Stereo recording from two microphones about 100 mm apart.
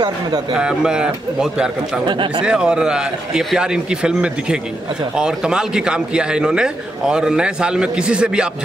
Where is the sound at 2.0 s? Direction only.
50° right (ahead or behind).